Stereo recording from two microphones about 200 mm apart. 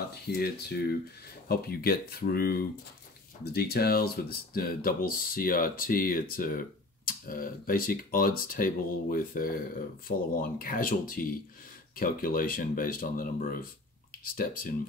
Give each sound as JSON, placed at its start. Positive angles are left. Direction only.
{"t": 0.3, "sound": "speech", "side_deg": 50}